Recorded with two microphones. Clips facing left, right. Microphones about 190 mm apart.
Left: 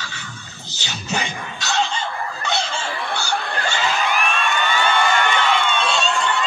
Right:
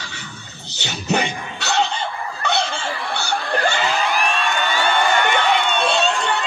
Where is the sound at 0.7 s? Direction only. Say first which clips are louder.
Right 6 dB; 60° right (ahead or behind).